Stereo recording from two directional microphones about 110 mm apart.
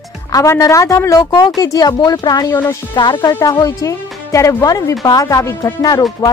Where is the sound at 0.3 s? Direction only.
30° left (ahead or behind).